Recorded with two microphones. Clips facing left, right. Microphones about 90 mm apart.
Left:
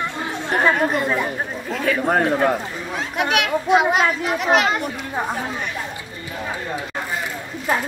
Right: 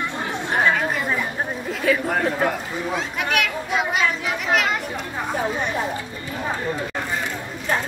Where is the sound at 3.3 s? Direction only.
65° left (ahead or behind).